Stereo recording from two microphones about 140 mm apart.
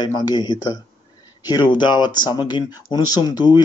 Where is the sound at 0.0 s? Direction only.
30° left (ahead or behind).